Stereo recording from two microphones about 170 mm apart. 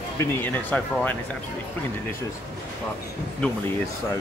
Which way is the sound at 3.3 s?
15° left (ahead or behind).